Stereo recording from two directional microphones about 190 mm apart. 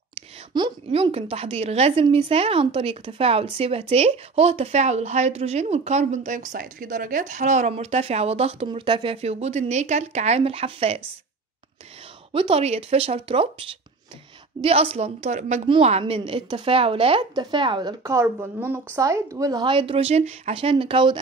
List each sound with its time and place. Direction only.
0.6 s a woman's voice: 25° right (ahead or behind)
12.3 s a woman's voice: 30° right (ahead or behind)
14.6 s a woman's voice: 30° right (ahead or behind)